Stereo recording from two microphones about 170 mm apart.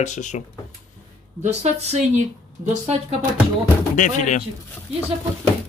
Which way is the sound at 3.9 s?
45° left (ahead or behind).